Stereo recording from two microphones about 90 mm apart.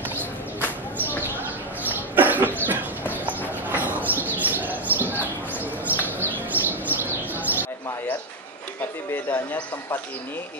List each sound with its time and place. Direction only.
1.9 s a sound: 20° right (ahead or behind)
3.1 s bird: 20° right (ahead or behind)
9.1 s speech: 20° left (ahead or behind)